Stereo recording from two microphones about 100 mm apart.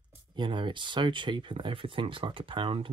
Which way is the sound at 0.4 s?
55° right (ahead or behind).